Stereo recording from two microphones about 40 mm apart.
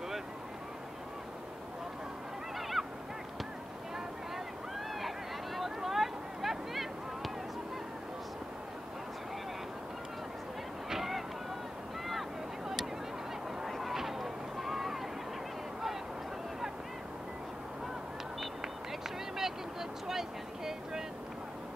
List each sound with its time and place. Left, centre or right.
2.8 s honk: centre
5.6 s a sound: centre
10.9 s a sound: centre
12.1 s boat: centre
13.7 s run: centre
19.3 s vehicle: centre